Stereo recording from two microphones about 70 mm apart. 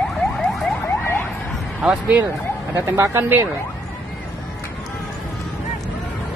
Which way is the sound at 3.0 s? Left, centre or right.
Right.